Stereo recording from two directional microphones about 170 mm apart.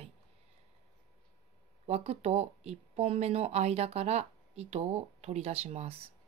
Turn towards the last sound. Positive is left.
turn(degrees=-40)  # may be behind; listen again after turning